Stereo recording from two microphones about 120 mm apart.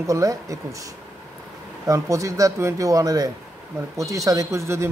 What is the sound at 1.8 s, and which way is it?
A man's voice, 25° right (ahead or behind).